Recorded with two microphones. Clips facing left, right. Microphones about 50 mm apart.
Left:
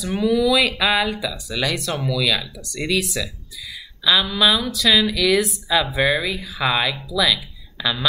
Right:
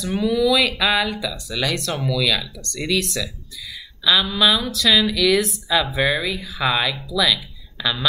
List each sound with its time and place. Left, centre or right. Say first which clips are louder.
0.2 s speech: left 1 dB; centre